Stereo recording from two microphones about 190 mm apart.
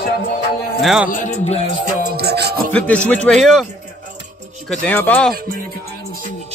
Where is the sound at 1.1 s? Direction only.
40° left (ahead or behind).